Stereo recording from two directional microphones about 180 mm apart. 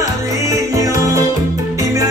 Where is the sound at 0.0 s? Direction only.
15° right (ahead or behind).